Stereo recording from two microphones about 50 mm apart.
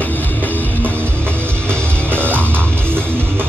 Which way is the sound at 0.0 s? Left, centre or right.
Left.